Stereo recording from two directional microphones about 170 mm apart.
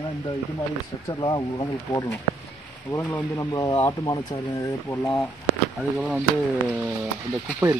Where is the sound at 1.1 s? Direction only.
25° left (ahead or behind).